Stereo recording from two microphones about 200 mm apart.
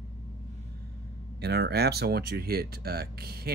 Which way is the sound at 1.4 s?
55° right (ahead or behind).